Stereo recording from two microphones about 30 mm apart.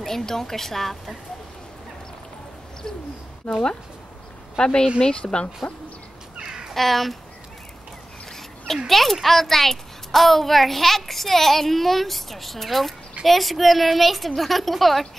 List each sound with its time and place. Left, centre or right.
0.0 s a woman's voice: centre
3.4 s speech: centre; by 5.5 s left
6.4 s a sound: right
6.7 s a woman's voice: centre
8.3 s a sound: centre
8.8 s a woman's voice: centre